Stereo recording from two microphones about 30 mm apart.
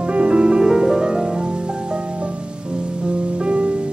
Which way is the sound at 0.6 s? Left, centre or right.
Centre.